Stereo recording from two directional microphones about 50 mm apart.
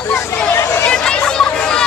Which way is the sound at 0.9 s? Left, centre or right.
Centre.